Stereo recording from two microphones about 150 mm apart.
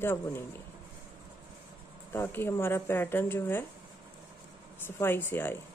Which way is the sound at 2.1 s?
15° left (ahead or behind).